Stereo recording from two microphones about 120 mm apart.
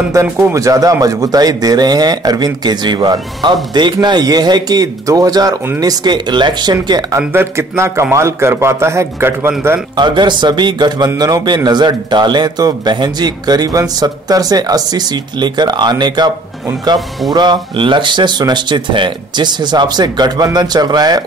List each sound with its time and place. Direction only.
0.1 s speech: 25° right (ahead or behind)
7.2 s a man's voice: 20° right (ahead or behind)
9.9 s speech: 40° right (ahead or behind)
17.3 s speech: 35° right (ahead or behind)